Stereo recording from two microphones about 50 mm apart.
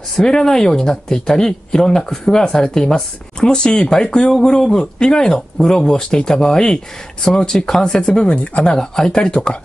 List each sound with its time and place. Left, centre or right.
0.2 s speech: centre
8.7 s speech: centre